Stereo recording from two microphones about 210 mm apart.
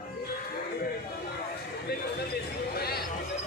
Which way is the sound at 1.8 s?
50° left (ahead or behind).